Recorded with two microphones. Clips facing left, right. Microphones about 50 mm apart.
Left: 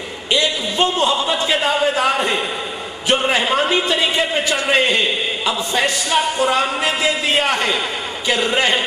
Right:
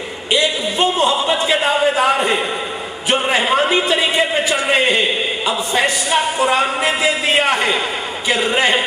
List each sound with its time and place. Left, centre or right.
0.3 s a man's voice: centre